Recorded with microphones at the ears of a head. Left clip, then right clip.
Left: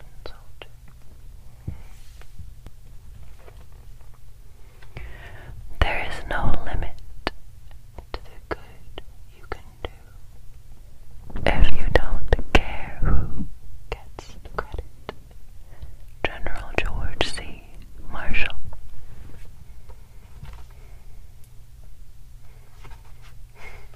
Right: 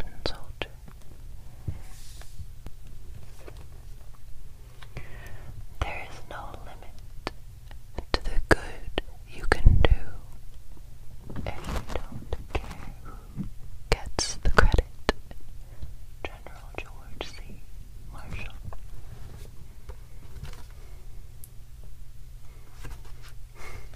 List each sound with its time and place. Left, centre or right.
0.0 s whispering: right
5.3 s whispering: left
7.9 s whispering: right
11.4 s whispering: left
13.8 s whispering: right
16.2 s whispering: left